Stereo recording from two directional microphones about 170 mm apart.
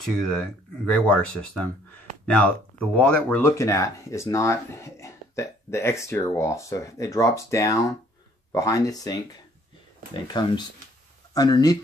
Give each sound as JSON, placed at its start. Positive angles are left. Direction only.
{"t": 0.0, "sound": "speech", "side_deg": 0}
{"t": 10.2, "sound": "speech", "side_deg": 25}